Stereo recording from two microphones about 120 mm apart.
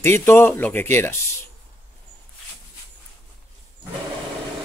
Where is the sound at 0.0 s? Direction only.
20° left (ahead or behind).